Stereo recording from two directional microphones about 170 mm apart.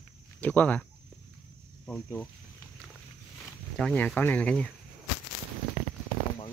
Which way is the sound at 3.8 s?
5° left (ahead or behind).